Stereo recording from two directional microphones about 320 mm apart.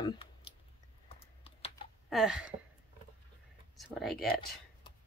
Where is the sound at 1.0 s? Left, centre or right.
Centre.